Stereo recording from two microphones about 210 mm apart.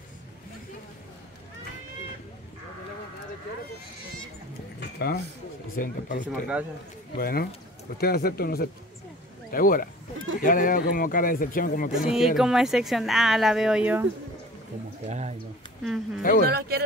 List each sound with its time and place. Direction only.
4.7 s a sound: 50° left (ahead or behind)
5.8 s speech: 40° left (ahead or behind)
12.1 s speech: centre (ahead or behind)
15.0 s a sound: 30° right (ahead or behind)
15.8 s speech: centre (ahead or behind)
16.2 s speech: 40° left (ahead or behind)
16.4 s speech: 50° right (ahead or behind)